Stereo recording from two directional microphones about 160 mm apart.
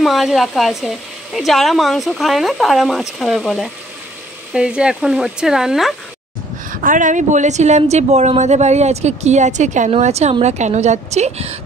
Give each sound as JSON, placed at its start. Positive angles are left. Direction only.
{"t": 0.0, "sound": "speech", "side_deg": 0}
{"t": 6.7, "sound": "a woman's voice", "side_deg": -60}